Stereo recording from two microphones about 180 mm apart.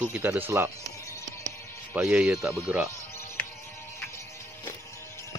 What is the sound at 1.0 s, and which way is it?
Music, 15° left (ahead or behind).